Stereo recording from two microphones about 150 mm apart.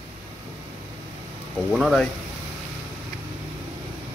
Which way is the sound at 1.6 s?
Centre (ahead or behind).